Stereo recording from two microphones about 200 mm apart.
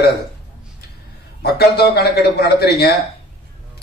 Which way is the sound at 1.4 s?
50° left (ahead or behind).